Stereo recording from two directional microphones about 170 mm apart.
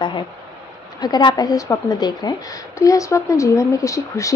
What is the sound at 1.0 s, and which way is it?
A woman's voice, 25° left (ahead or behind).